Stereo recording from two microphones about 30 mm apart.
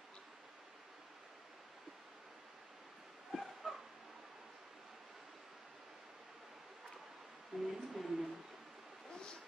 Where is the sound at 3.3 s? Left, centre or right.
Centre.